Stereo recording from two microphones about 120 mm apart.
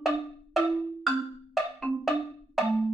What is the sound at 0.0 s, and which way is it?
Marimba, centre (ahead or behind).